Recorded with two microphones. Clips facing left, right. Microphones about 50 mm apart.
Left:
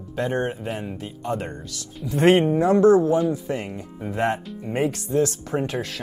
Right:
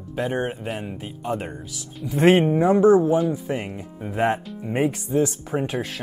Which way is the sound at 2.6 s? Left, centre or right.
Centre.